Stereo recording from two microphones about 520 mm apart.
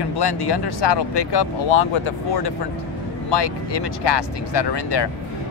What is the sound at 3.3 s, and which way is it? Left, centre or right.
Speech, left.